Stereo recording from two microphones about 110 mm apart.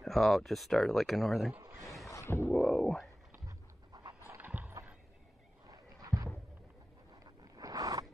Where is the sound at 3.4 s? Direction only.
40° right (ahead or behind).